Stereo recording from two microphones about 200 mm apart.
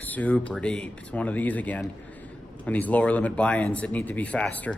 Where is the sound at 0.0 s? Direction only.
10° left (ahead or behind).